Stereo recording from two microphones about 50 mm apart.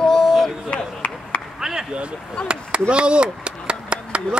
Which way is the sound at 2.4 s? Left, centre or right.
Right.